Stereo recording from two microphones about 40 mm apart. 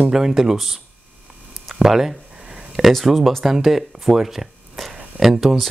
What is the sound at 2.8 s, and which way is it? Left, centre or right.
Mantra, centre.